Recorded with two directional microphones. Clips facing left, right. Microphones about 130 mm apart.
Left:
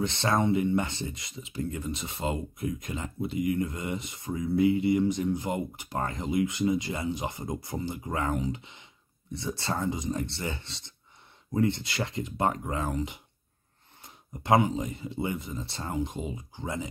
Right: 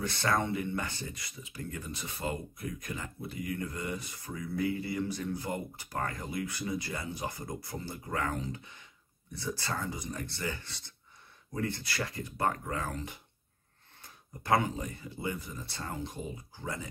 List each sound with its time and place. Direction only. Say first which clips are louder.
0.0 s speech: left 4 dB; 20° left (ahead or behind)